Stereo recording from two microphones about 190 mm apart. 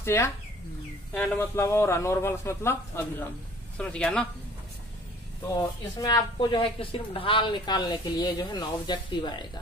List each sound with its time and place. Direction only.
0.0 s a man's voice: 10° left (ahead or behind)
5.6 s speech: 20° left (ahead or behind)